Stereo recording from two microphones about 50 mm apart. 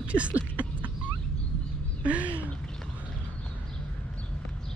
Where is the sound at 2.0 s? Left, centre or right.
Right.